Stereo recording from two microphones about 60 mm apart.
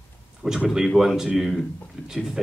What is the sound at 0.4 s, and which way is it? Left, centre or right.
Speech, centre.